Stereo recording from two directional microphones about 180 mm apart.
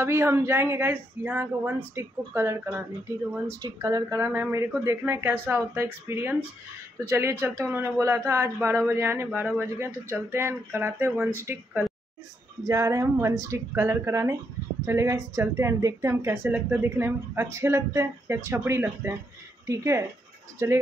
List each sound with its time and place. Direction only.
0.0 s speech: 15° right (ahead or behind)
12.6 s speech: 15° right (ahead or behind)